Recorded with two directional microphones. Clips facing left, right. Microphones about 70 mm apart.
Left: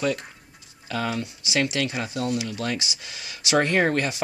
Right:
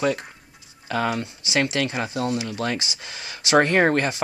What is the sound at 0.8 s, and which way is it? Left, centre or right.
Speech, right.